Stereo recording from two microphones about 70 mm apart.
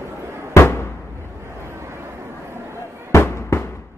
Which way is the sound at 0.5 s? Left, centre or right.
Left.